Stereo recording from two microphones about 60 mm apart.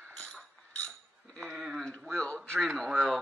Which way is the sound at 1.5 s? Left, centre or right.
Centre.